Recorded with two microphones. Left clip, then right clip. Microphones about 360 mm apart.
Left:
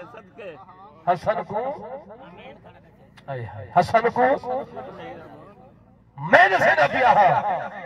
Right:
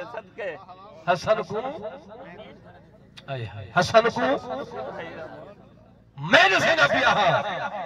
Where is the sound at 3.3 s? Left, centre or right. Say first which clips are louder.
Left 2 dB; centre.